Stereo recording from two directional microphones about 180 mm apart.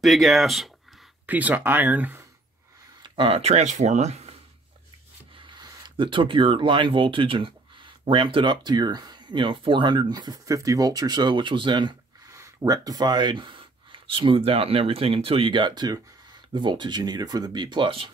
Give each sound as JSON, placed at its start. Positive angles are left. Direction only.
{"t": 0.0, "sound": "speech", "side_deg": 0}
{"t": 3.0, "sound": "speech", "side_deg": -30}
{"t": 5.5, "sound": "speech", "side_deg": -25}